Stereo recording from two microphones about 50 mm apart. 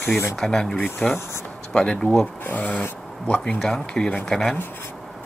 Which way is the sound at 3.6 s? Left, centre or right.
Centre.